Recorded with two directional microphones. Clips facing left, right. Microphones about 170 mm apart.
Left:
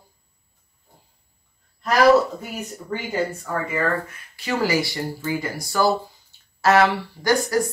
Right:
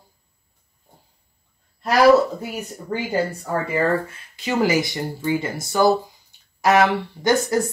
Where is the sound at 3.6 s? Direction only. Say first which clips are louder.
Right 4 dB; 30° right (ahead or behind).